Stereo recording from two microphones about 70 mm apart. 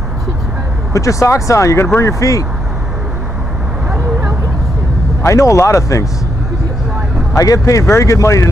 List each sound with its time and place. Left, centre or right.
0.9 s speech: left
5.2 s speech: left
7.3 s speech: left